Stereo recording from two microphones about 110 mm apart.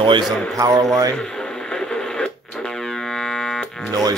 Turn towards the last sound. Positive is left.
turn(degrees=-35)  # may be behind; listen again after turning